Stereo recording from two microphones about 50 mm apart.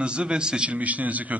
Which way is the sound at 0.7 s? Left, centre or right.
Right.